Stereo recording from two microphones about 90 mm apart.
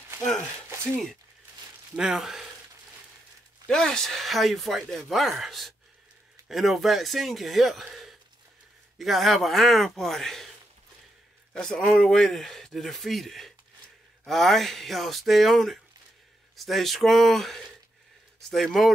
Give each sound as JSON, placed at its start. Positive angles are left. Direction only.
{"t": 2.0, "sound": "speech", "side_deg": -5}
{"t": 3.6, "sound": "speech", "side_deg": 5}
{"t": 11.5, "sound": "speech", "side_deg": 5}